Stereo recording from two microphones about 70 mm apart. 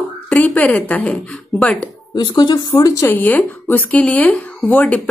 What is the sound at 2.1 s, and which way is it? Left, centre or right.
Speech, left.